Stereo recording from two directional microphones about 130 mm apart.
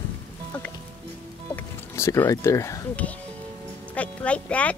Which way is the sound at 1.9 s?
20° left (ahead or behind).